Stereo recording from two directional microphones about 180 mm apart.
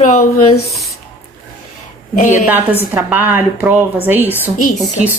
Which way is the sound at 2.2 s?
45° left (ahead or behind).